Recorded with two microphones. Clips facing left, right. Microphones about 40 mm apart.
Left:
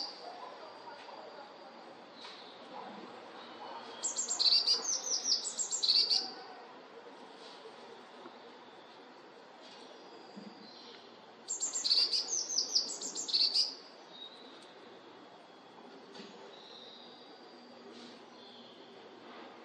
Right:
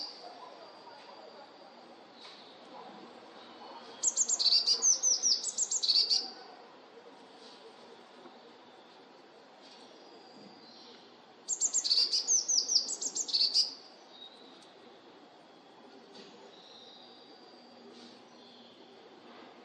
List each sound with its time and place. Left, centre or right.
4.0 s chirp: centre
11.4 s chirp: centre